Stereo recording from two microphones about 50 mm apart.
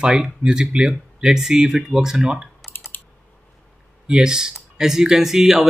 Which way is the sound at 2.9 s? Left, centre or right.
Left.